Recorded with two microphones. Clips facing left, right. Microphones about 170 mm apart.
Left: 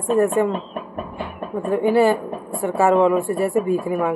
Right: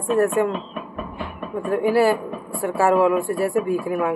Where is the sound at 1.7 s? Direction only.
5° right (ahead or behind).